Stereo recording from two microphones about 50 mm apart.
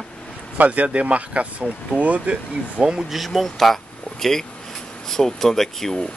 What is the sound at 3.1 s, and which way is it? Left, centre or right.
Speech, centre.